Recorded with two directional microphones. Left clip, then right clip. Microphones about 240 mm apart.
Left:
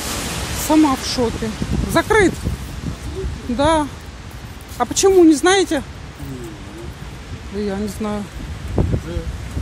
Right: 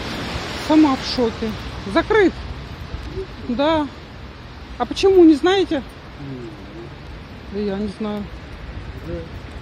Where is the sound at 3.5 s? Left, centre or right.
Centre.